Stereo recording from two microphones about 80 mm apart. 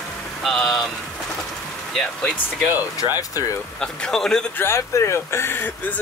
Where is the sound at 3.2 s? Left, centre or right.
Left.